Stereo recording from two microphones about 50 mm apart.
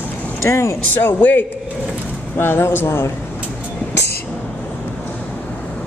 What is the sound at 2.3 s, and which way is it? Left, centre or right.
Speech, left.